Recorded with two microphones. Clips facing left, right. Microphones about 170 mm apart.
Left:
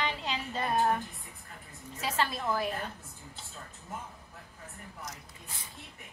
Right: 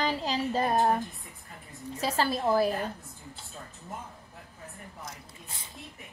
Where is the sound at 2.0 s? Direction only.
35° right (ahead or behind).